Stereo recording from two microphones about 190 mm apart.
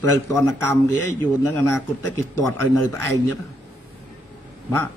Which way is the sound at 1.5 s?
15° left (ahead or behind).